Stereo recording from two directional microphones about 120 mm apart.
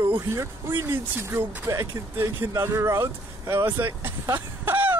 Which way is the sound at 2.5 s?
25° right (ahead or behind).